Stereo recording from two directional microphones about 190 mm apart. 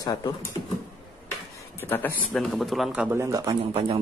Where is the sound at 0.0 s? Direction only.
20° left (ahead or behind).